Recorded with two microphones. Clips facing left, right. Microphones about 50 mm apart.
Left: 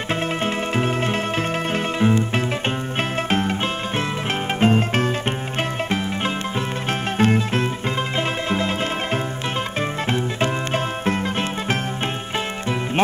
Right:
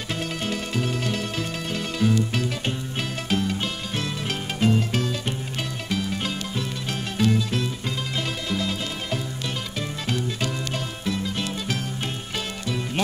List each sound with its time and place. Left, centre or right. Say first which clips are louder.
0.1 s music: left 5 dB; left